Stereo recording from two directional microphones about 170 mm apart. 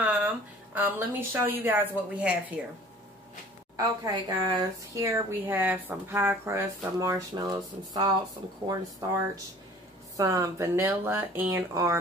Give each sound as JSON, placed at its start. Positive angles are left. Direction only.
{"t": 0.0, "sound": "a sound", "side_deg": -10}
{"t": 0.7, "sound": "speech", "side_deg": -10}
{"t": 3.7, "sound": "speech", "side_deg": -20}